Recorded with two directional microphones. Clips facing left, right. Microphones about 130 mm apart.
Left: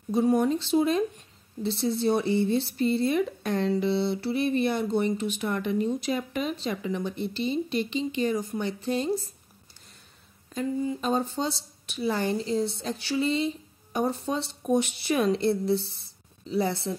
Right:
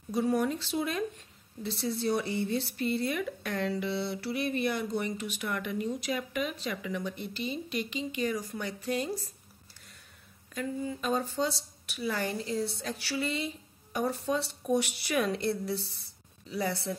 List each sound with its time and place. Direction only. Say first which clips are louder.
0.1 s a woman's voice: left 5 dB; 25° left (ahead or behind)
10.5 s a woman's voice: left 6 dB; 25° left (ahead or behind)